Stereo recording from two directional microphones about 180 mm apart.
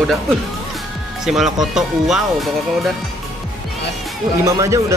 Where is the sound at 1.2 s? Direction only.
Centre (ahead or behind).